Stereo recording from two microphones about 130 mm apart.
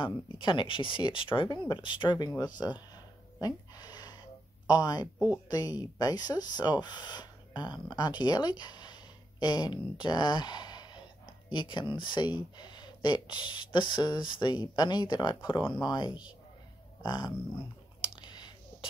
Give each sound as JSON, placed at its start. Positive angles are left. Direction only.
{"t": 0.0, "sound": "speech", "side_deg": 40}
{"t": 3.3, "sound": "a sound", "side_deg": 30}
{"t": 4.6, "sound": "speech", "side_deg": 30}
{"t": 18.0, "sound": "whispering", "side_deg": 35}